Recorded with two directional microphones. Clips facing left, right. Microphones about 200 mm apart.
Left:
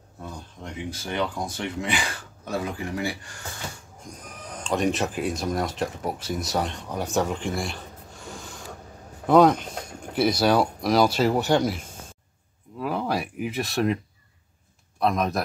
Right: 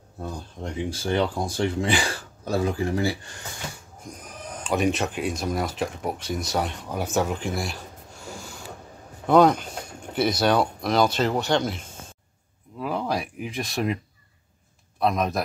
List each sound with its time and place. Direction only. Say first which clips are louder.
0.2 s speech: right 5 dB; 35° right (ahead or behind)
4.6 s speech: right 1 dB; centre (ahead or behind)
9.2 s speech: even; centre (ahead or behind)
12.8 s speech: even; 5° left (ahead or behind)
15.0 s speech: even; centre (ahead or behind)